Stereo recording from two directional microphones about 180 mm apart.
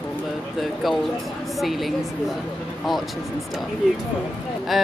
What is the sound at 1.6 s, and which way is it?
Speech, centre (ahead or behind).